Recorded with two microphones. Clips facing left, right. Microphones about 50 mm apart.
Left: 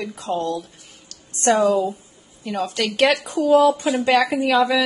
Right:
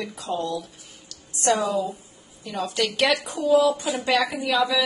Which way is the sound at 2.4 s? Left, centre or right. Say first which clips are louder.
Left 2 dB; left.